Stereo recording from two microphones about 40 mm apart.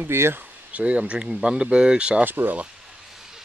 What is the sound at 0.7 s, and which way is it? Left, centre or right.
Speech, right.